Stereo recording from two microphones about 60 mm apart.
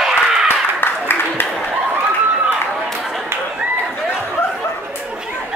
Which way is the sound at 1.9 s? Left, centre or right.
Right.